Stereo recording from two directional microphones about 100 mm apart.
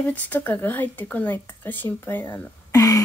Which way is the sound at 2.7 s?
35° left (ahead or behind).